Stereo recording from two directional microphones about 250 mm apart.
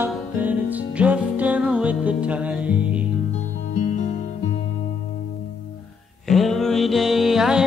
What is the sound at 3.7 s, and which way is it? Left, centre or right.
Music, left.